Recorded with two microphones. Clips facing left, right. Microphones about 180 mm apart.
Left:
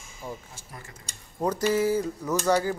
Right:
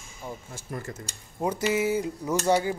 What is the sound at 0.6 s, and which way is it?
Speech, 45° right (ahead or behind).